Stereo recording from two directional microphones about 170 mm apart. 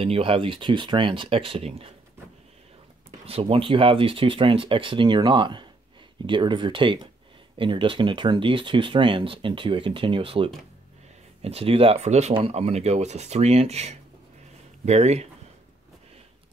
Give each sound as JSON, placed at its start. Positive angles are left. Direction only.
{"t": 0.0, "sound": "speech", "side_deg": -35}
{"t": 3.3, "sound": "speech", "side_deg": -35}